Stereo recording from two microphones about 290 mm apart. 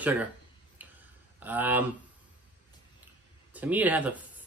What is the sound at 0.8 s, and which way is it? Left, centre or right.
Tick-tock, centre.